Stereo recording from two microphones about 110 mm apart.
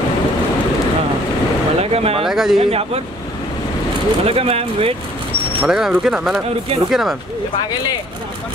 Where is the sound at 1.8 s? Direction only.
65° right (ahead or behind).